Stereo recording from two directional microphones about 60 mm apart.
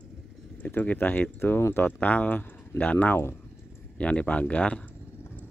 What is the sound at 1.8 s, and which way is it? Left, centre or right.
Speech, left.